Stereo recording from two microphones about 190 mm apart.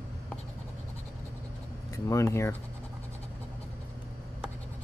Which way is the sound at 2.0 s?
15° left (ahead or behind).